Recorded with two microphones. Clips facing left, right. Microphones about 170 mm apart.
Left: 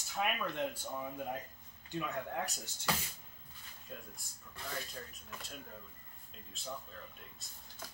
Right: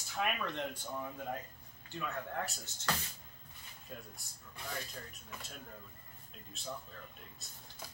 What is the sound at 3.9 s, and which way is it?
Speech, centre (ahead or behind).